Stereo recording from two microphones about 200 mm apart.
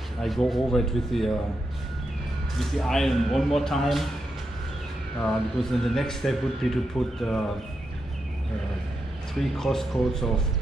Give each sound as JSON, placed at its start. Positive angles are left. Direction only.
{"t": 0.2, "sound": "speech", "side_deg": 0}
{"t": 2.5, "sound": "speech", "side_deg": 0}
{"t": 5.2, "sound": "speech", "side_deg": 0}
{"t": 9.4, "sound": "speech", "side_deg": 0}